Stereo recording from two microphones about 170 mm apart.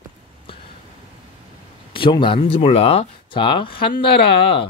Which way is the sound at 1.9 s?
30° left (ahead or behind).